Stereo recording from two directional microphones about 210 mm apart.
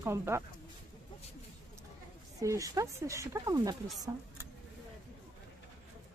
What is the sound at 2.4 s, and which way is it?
Speech, 15° right (ahead or behind).